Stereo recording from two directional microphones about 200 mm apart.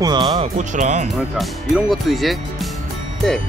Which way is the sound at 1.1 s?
Centre (ahead or behind).